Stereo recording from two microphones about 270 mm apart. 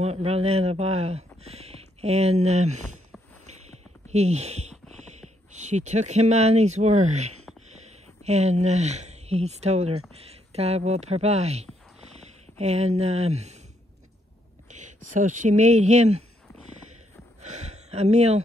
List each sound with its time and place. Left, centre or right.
0.0 s speech: right
4.1 s speech: right
14.7 s a sound: right
15.1 s speech: right